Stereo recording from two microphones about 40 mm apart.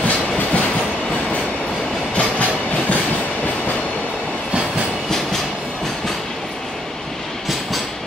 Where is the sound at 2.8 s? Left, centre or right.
Left.